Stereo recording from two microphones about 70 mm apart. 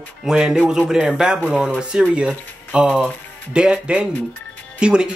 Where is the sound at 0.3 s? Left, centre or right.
Centre.